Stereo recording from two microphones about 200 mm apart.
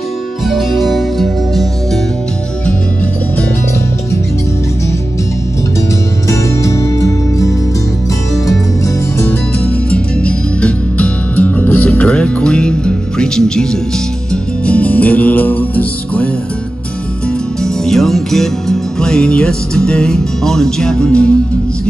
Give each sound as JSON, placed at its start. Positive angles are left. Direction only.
{"t": 0.5, "sound": "music", "side_deg": 0}
{"t": 6.2, "sound": "music", "side_deg": 15}
{"t": 9.8, "sound": "music", "side_deg": 5}
{"t": 17.8, "sound": "music", "side_deg": 0}